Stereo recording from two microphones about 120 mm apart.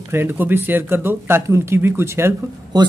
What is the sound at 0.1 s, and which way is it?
Speech, 15° right (ahead or behind).